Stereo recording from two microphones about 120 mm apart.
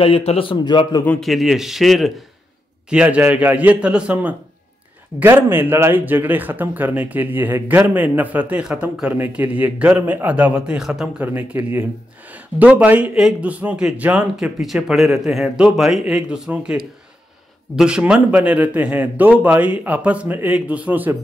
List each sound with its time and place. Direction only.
0.0 s a man's voice: 55° left (ahead or behind); by 1.0 s 35° left (ahead or behind)
1.0 s a man's voice: 10° left (ahead or behind)
1.3 s a man's voice: 5° right (ahead or behind)
17.7 s speech: 5° right (ahead or behind)